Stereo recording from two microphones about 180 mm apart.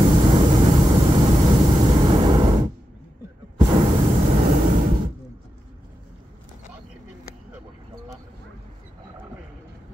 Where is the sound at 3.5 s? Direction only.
25° right (ahead or behind).